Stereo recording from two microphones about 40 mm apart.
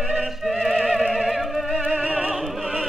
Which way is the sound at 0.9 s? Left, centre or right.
Centre.